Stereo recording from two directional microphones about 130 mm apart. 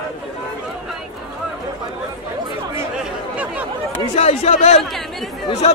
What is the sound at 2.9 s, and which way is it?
Chatter, 10° right (ahead or behind).